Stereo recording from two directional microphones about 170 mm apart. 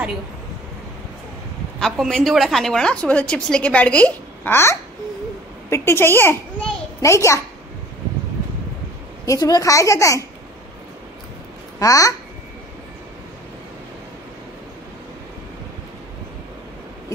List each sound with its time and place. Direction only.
1.8 s a woman's voice: centre (ahead or behind); by 7.3 s 15° left (ahead or behind)
9.2 s a child's voice: 20° left (ahead or behind)
11.8 s a child's voice: 20° left (ahead or behind)